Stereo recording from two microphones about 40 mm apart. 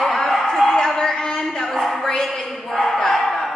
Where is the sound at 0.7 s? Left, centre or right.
Centre.